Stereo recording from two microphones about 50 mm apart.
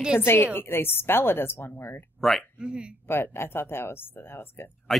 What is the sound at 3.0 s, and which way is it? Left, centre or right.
A woman's voice, left.